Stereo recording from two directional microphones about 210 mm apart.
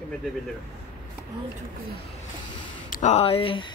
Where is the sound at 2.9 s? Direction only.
35° left (ahead or behind).